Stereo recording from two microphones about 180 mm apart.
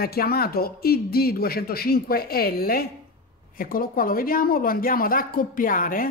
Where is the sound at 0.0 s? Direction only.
60° left (ahead or behind).